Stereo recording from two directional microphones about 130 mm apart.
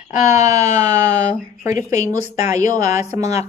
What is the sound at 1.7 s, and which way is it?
Speech, 70° left (ahead or behind).